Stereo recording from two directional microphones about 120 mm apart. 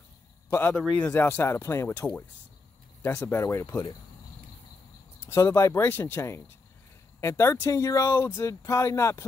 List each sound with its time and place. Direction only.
0.5 s speech: 15° left (ahead or behind)
5.3 s speech: 25° left (ahead or behind)